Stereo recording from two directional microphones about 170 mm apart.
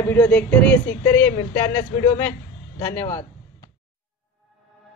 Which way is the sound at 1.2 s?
20° left (ahead or behind).